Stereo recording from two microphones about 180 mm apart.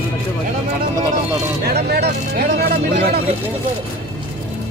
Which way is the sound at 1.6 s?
65° right (ahead or behind).